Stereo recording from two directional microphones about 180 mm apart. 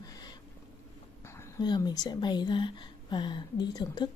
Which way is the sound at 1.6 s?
25° left (ahead or behind).